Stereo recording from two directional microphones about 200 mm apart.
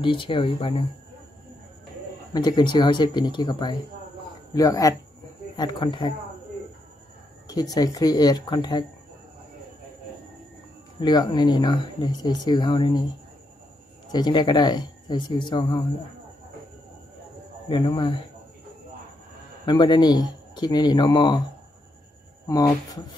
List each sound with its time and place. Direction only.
0.0 s speech: 25° left (ahead or behind)
2.3 s speech: 20° left (ahead or behind)
7.4 s speech: 20° left (ahead or behind)
11.0 s speech: 20° left (ahead or behind)
14.1 s speech: 20° left (ahead or behind)
17.6 s speech: 25° left (ahead or behind)
19.6 s speech: 25° left (ahead or behind)